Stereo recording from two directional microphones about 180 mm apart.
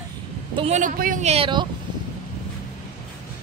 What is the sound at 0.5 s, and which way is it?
A woman's voice, 40° right (ahead or behind).